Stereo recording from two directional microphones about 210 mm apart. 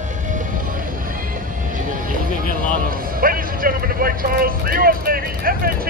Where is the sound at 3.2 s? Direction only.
40° right (ahead or behind).